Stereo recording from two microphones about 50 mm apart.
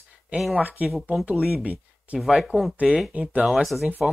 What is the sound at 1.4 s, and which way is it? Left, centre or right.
Speech, centre.